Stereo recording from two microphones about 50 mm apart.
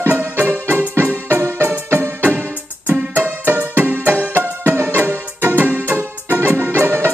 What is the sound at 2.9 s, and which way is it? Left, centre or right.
Music, right.